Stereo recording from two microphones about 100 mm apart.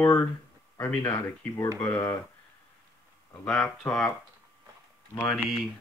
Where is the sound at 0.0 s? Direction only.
25° left (ahead or behind).